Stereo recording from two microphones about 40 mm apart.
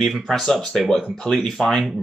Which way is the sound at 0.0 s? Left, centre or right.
Centre.